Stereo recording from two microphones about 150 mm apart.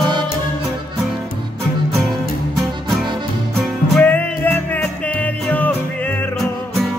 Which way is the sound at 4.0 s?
10° left (ahead or behind).